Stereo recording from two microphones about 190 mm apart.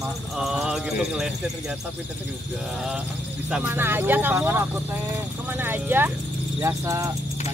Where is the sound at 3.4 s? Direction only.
5° right (ahead or behind).